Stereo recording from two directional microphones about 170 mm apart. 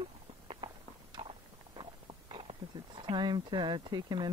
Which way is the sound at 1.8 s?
30° right (ahead or behind).